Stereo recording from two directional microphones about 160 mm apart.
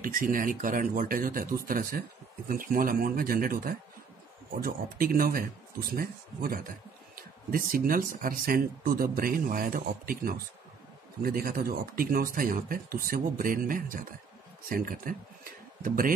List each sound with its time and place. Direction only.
0.0 s speech: 60° right (ahead or behind)